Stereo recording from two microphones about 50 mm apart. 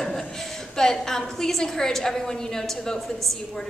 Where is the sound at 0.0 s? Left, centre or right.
Centre.